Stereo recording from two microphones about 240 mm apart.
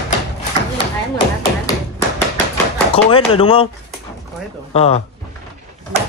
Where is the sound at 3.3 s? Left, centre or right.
Left.